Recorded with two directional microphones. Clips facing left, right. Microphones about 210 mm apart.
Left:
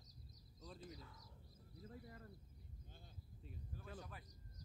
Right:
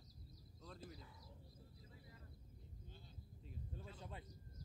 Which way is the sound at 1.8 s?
55° left (ahead or behind).